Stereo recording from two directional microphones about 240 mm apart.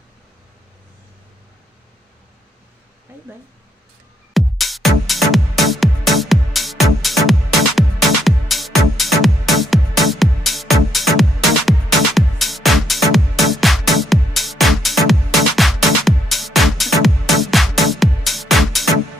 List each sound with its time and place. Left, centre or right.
4.3 s music: centre